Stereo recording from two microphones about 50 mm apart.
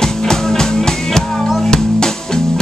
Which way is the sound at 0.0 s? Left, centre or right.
Centre.